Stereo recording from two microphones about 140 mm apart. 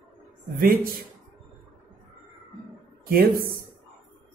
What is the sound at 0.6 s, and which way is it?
Speech, 90° right.